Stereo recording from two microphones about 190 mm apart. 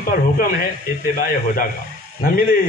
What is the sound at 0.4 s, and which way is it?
A man's voice, 50° left (ahead or behind).